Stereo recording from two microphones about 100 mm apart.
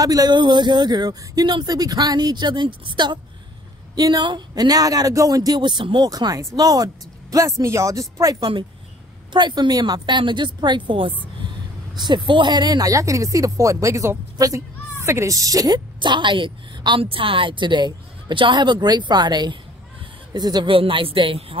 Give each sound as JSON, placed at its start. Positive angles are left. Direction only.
{"t": 0.0, "sound": "a woman's voice", "side_deg": -40}
{"t": 5.6, "sound": "a woman's voice", "side_deg": -50}
{"t": 6.0, "sound": "speech", "side_deg": -40}
{"t": 8.4, "sound": "a woman's voice", "side_deg": -55}
{"t": 20.7, "sound": "speech", "side_deg": -65}